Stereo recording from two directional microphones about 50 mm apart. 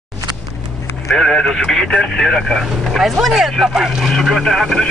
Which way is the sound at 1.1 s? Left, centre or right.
Centre.